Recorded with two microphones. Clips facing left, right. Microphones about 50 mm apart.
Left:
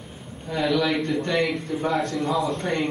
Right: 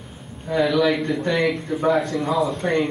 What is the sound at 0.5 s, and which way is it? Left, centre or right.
Speech, centre.